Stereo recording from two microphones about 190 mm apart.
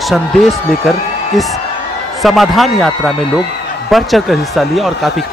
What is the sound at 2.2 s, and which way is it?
Speech, centre (ahead or behind).